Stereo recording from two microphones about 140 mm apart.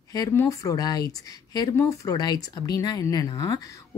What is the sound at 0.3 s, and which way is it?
Speech, 20° left (ahead or behind).